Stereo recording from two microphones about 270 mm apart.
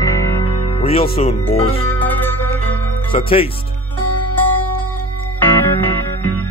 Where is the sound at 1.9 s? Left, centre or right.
Centre.